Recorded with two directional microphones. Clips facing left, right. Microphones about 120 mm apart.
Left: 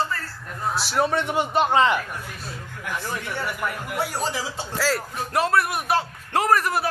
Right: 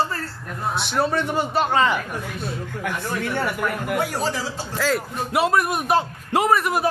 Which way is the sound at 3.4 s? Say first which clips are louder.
Right 4 dB; 55° right (ahead or behind).